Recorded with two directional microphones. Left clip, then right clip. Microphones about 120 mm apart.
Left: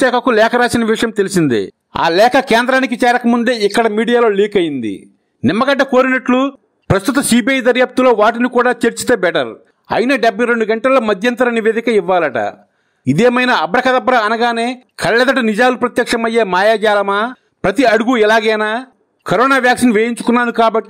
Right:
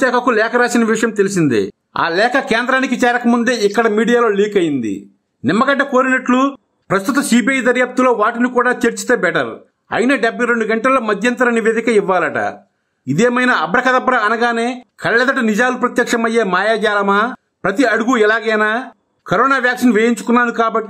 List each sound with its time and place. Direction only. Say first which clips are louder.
0.0 s a man's voice: left 1 dB; 45° left (ahead or behind)
0.4 s a man's voice: left 2 dB; 60° left (ahead or behind)
1.5 s a man's voice: even; 45° left (ahead or behind)